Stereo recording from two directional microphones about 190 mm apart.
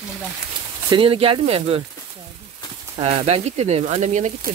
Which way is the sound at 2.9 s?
30° right (ahead or behind).